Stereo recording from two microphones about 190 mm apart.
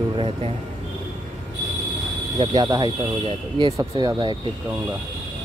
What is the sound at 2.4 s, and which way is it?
Speech, 20° right (ahead or behind).